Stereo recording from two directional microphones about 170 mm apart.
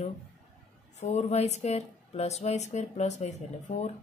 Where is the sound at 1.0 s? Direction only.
40° left (ahead or behind).